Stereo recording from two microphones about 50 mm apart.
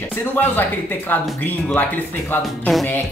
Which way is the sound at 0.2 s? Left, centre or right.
Left.